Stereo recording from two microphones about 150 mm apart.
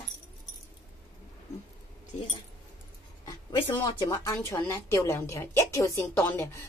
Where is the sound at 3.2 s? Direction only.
30° left (ahead or behind).